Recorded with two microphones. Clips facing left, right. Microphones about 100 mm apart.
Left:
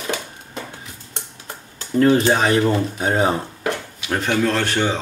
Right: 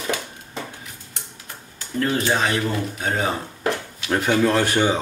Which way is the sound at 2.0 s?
30° left (ahead or behind).